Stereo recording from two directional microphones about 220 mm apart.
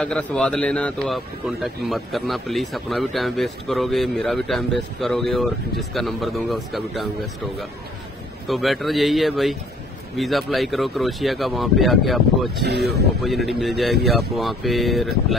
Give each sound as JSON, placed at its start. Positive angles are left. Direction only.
{"t": 0.0, "sound": "a man's voice", "side_deg": 5}
{"t": 8.5, "sound": "a man's voice", "side_deg": 0}
{"t": 12.6, "sound": "speech", "side_deg": -50}
{"t": 13.2, "sound": "a man's voice", "side_deg": 0}